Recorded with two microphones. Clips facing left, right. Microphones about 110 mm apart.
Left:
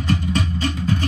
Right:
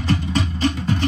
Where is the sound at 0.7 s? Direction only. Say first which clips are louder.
Left 1 dB; 40° right (ahead or behind).